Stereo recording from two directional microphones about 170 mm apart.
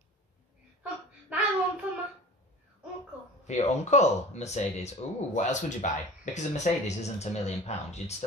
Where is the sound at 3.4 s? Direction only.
45° left (ahead or behind).